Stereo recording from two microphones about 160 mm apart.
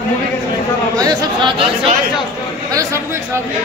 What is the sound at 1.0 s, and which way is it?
Speech, 30° right (ahead or behind).